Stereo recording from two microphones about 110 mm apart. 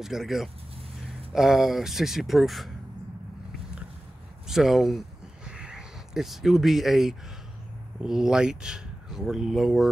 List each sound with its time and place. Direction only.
0.0 s speech: 5° right (ahead or behind)
4.5 s a sound: 5° right (ahead or behind)
8.0 s speech: 5° right (ahead or behind)